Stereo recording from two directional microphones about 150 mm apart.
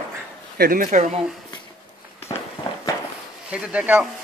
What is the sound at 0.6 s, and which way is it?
Speech, 65° right (ahead or behind).